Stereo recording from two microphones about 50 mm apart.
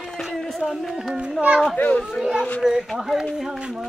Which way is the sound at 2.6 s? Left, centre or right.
Centre.